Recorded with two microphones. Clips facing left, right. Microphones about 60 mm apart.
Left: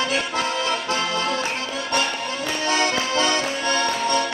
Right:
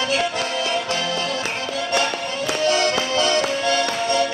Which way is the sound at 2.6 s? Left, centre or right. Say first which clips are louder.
Right 2 dB; left.